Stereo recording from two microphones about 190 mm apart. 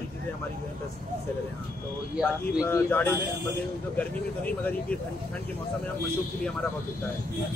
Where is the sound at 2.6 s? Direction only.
10° left (ahead or behind).